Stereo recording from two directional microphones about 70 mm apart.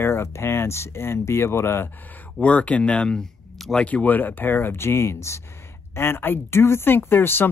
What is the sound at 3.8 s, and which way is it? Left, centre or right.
Speech, left.